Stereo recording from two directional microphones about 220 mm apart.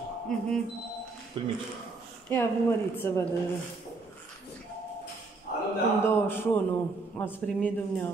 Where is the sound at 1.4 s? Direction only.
20° right (ahead or behind).